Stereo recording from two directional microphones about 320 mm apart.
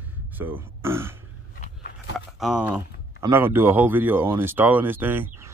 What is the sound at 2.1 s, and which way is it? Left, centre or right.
Speech, centre.